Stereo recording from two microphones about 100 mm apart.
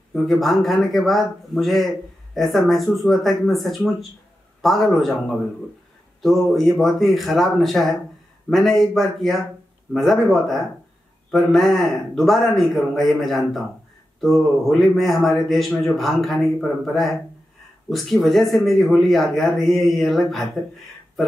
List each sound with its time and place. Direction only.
0.1 s speech: centre (ahead or behind)